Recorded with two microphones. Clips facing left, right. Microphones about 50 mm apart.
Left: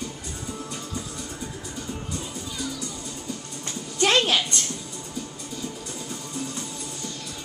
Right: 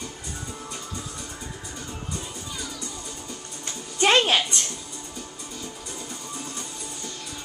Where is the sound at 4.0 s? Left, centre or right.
Centre.